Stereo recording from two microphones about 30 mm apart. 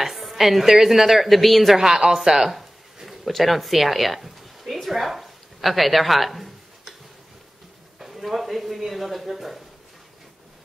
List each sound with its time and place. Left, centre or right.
0.0 s a woman's voice: centre
1.8 s a woman's voice: centre
2.3 s a sound: centre
3.3 s a woman's voice: centre
8.0 s speech: centre